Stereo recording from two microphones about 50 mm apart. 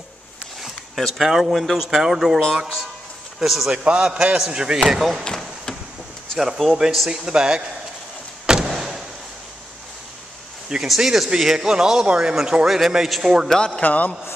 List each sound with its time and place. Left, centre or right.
0.6 s a sound: centre
1.2 s a man's voice: centre
3.7 s a man's voice: centre
5.2 s a sound: centre
6.3 s a man's voice: centre
8.6 s a sound: centre
11.0 s a man's voice: centre
13.5 s speech: centre
13.8 s a man's voice: left